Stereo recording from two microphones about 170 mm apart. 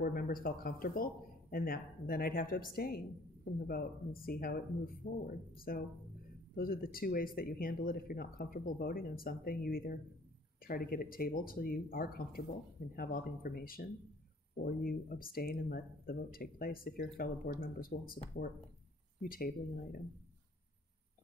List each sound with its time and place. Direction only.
0.0 s speech: 60° left (ahead or behind)
19.2 s speech: 60° left (ahead or behind)